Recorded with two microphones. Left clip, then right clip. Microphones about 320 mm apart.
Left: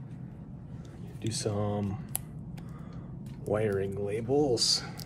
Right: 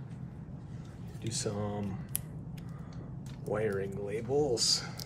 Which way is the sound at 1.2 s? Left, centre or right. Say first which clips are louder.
Left 3 dB; centre.